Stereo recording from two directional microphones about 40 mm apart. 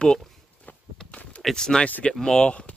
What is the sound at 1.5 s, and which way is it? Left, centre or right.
Speech, centre.